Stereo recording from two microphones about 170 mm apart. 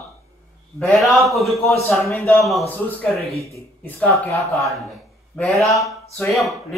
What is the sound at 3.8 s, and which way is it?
Speech, 15° left (ahead or behind).